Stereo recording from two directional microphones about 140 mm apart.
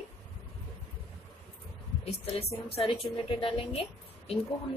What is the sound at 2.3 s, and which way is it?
A woman's voice, 45° left (ahead or behind).